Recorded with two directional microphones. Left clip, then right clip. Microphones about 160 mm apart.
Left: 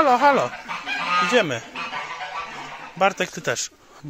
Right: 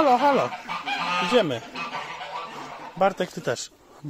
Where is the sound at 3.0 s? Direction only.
20° right (ahead or behind).